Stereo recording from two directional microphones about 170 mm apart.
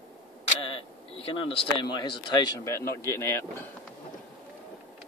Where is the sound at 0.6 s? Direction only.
35° left (ahead or behind).